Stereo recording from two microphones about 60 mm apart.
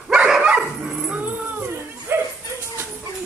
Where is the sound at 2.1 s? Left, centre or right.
Right.